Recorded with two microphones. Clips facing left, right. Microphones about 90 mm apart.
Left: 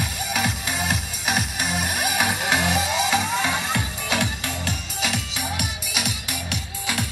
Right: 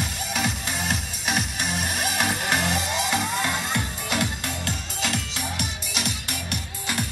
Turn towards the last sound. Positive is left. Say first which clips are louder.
# left 1 dB
turn(degrees=5)  # may be behind; listen again after turning